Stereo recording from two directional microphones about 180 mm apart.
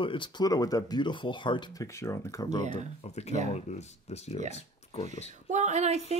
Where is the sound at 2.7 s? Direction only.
35° left (ahead or behind).